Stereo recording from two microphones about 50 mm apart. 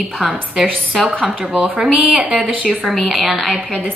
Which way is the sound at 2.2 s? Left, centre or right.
Right.